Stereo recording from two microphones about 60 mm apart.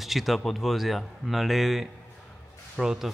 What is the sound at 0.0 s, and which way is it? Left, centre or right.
A man's voice, centre.